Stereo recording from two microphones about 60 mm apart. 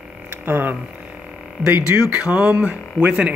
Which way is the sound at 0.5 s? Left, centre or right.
Right.